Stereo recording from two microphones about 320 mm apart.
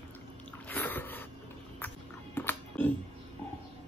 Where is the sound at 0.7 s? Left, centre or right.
Centre.